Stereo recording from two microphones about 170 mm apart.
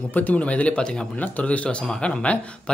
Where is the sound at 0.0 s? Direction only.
10° left (ahead or behind).